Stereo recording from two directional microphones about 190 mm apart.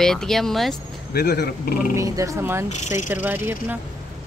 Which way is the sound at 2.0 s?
15° right (ahead or behind).